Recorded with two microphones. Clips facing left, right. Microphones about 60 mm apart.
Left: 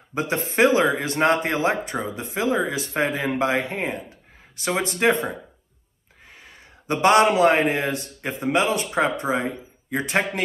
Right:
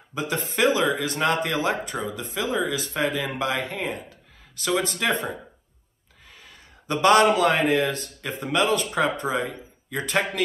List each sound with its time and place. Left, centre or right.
0.1 s a man's voice: left
6.2 s a sound: left
8.2 s speech: left